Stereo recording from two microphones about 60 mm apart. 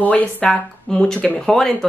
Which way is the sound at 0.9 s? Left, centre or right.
Centre.